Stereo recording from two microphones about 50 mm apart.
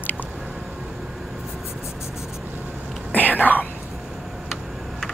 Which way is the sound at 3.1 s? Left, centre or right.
Left.